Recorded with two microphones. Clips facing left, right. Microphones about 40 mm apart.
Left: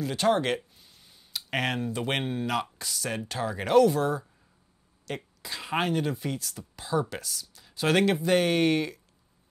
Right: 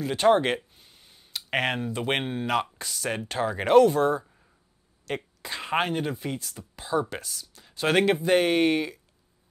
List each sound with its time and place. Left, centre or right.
0.0 s speech: centre